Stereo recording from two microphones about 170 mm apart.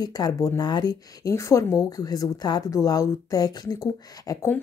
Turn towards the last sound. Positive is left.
turn(degrees=20)  # may be behind; listen again after turning